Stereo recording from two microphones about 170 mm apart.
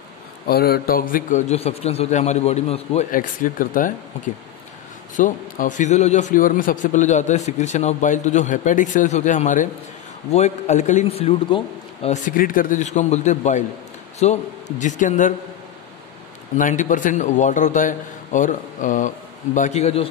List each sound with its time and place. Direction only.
0.5 s a man's voice: 65° left (ahead or behind)
1.5 s a man's voice: 40° left (ahead or behind)
3.1 s a man's voice: 55° left (ahead or behind)
5.1 s a man's voice: 50° left (ahead or behind)
12.3 s a man's voice: 55° left (ahead or behind)
16.5 s a man's voice: 50° left (ahead or behind)